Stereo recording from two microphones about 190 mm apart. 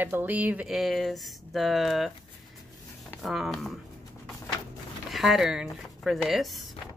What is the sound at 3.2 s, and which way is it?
Speech, centre (ahead or behind).